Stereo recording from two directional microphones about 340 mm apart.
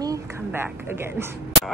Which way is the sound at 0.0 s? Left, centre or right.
Centre.